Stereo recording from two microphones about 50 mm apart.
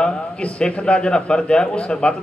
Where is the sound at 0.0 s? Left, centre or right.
Left.